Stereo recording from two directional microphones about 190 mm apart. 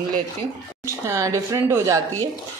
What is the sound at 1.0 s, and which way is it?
A woman's voice, 15° right (ahead or behind).